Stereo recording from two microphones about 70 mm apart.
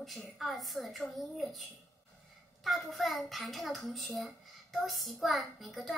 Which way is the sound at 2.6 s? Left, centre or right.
Centre.